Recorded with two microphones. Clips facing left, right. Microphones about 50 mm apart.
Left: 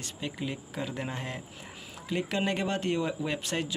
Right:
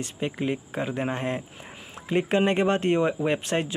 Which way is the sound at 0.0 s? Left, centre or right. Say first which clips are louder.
Right 7 dB; right.